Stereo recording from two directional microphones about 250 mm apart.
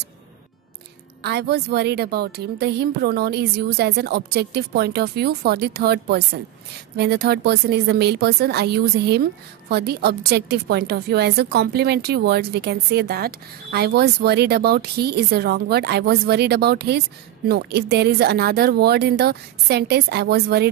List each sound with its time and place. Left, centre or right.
1.2 s a woman's voice: right